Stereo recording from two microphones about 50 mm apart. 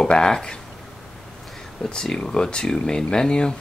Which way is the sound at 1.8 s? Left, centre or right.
Centre.